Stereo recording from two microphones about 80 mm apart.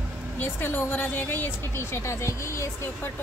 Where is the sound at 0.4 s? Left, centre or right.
Left.